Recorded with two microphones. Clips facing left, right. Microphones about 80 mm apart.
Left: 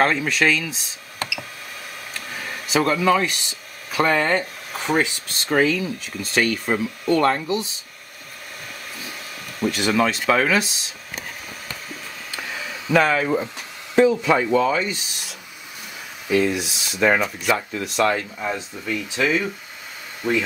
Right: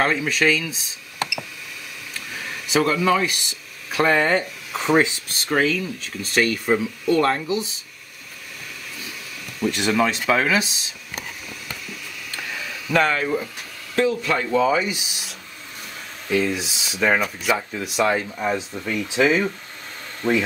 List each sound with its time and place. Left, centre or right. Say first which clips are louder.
0.0 s speech: left 1 dB; centre
2.4 s speech: even; centre
5.4 s speech: left 2 dB; centre
9.7 s speech: even; centre
12.3 s a sound: even; left
12.9 s speech: left 2 dB; centre
13.9 s speech: left 4 dB; centre
14.5 s speech: even; centre
16.3 s speech: left 2 dB; centre
18.1 s speech: right 3 dB; centre
20.2 s speech: right 1 dB; centre